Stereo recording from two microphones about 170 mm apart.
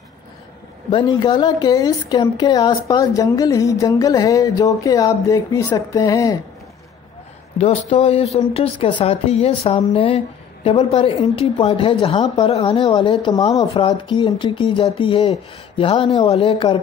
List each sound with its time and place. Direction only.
0.8 s a woman's voice: 25° left (ahead or behind)
7.5 s a woman's voice: 35° left (ahead or behind)